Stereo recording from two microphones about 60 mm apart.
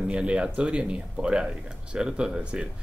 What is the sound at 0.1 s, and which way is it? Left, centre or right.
Speech, centre.